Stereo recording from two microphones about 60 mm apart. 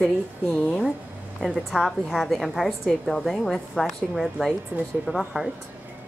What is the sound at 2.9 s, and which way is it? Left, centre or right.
A woman's voice, centre.